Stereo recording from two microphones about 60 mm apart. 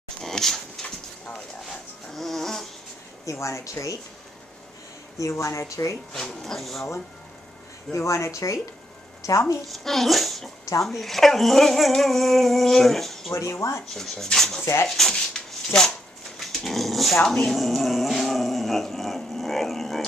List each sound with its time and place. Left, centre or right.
0.2 s a sound: centre
2.1 s insect: centre
3.3 s speech: left
5.3 s speech: left
6.1 s speech: centre
7.9 s speech: left
9.7 s speech: centre
13.3 s speech: left
14.1 s speech: centre
14.6 s speech: left
14.9 s speech: centre
16.3 s dog: centre